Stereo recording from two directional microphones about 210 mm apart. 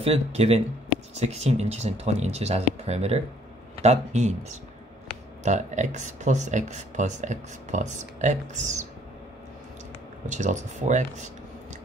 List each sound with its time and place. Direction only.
0.0 s speech: 30° right (ahead or behind)
10.2 s speech: 35° right (ahead or behind)